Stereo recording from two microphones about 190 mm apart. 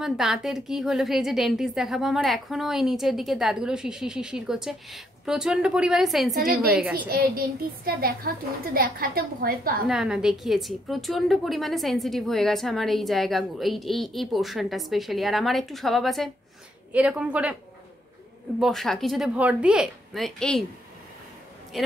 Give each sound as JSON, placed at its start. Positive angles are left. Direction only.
{"t": 0.0, "sound": "a woman's voice", "side_deg": 0}
{"t": 6.3, "sound": "a woman's voice", "side_deg": -50}
{"t": 9.8, "sound": "a woman's voice", "side_deg": -5}
{"t": 18.6, "sound": "a woman's voice", "side_deg": 0}
{"t": 21.7, "sound": "a woman's voice", "side_deg": 0}